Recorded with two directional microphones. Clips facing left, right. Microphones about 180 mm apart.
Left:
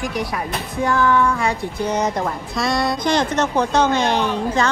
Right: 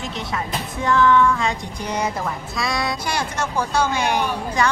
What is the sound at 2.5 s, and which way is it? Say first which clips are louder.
Speech: left 5 dB; centre (ahead or behind).